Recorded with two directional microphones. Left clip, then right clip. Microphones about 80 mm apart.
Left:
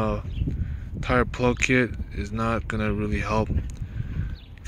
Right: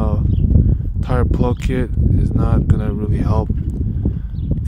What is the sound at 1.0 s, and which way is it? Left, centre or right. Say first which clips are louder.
Speech: right 1 dB; right.